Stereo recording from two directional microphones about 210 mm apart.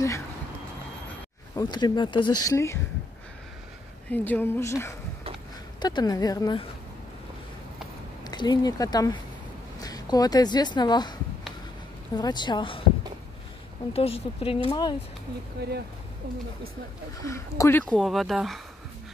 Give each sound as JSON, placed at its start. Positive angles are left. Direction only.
{"t": 1.5, "sound": "speech", "side_deg": 20}
{"t": 4.1, "sound": "speech", "side_deg": 10}
{"t": 8.2, "sound": "speech", "side_deg": 20}
{"t": 12.2, "sound": "speech", "side_deg": 20}
{"t": 13.9, "sound": "speech", "side_deg": 30}
{"t": 15.6, "sound": "speech", "side_deg": -50}
{"t": 17.2, "sound": "speech", "side_deg": 15}